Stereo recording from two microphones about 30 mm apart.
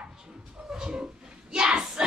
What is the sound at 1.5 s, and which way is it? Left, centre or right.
Child singing, right.